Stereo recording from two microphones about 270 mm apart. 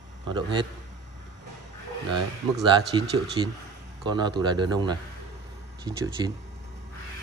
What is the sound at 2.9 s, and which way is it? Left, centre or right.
A man's voice, centre.